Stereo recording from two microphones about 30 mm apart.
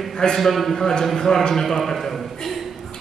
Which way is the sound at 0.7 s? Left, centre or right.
Centre.